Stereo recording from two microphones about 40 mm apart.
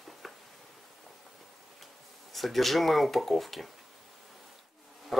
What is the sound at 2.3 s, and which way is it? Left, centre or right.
Speech, centre.